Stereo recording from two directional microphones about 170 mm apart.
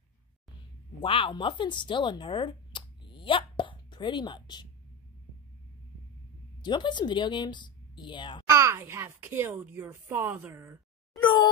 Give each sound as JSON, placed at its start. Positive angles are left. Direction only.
{"t": 1.0, "sound": "speech", "side_deg": 30}
{"t": 6.6, "sound": "speech", "side_deg": 25}
{"t": 8.5, "sound": "a child's voice", "side_deg": -15}